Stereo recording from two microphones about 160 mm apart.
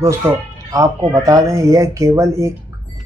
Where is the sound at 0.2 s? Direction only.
15° right (ahead or behind).